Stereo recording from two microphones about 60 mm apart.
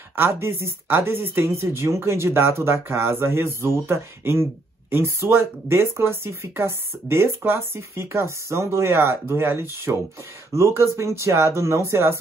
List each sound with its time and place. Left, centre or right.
0.1 s speech: right
10.5 s speech: right